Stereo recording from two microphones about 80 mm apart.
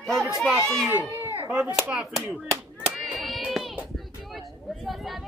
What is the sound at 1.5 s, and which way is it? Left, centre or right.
Speech, centre.